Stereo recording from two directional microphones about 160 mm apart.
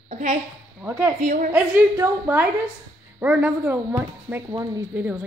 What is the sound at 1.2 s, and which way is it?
Speech, 55° right (ahead or behind).